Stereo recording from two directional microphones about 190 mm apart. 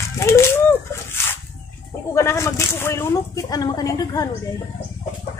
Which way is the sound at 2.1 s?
15° left (ahead or behind).